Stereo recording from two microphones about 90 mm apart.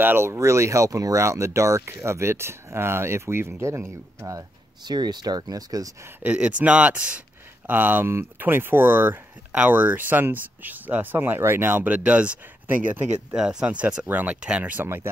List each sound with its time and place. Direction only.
0.0 s speech: 25° right (ahead or behind)
4.8 s speech: 50° right (ahead or behind)
6.2 s speech: 15° right (ahead or behind)